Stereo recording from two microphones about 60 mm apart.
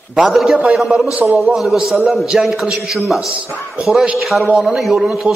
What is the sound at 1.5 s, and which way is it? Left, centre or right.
A man's voice, centre.